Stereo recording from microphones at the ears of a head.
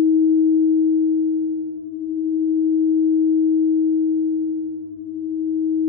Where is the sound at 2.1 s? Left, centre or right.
Left.